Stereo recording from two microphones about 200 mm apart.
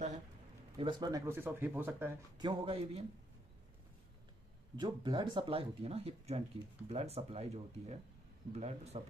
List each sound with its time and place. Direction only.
0.7 s speech: 25° right (ahead or behind)
2.3 s speech: 25° right (ahead or behind)
4.7 s speech: 25° right (ahead or behind)